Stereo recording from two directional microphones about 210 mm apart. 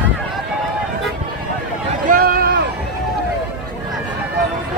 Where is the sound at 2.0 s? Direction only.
45° right (ahead or behind).